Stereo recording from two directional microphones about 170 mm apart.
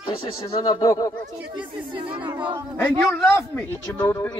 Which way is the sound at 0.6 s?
20° left (ahead or behind).